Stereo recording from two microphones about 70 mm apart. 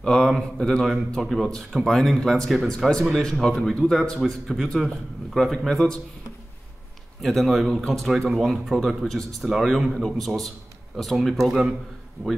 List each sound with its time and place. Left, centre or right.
0.0 s speech: centre
7.2 s speech: centre
12.2 s speech: right